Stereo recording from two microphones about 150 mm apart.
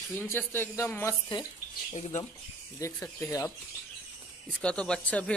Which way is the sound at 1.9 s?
50° left (ahead or behind).